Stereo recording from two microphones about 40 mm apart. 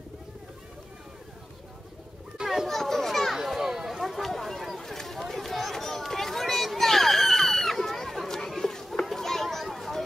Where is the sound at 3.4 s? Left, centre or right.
Centre.